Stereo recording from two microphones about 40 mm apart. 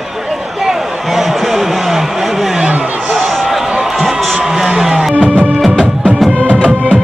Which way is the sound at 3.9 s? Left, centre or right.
Centre.